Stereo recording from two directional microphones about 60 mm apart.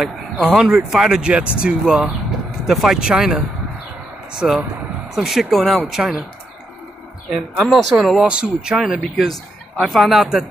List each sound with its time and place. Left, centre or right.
0.0 s speech: centre
5.1 s speech: centre
7.6 s speech: centre
8.2 s speech: centre
9.0 s speech: centre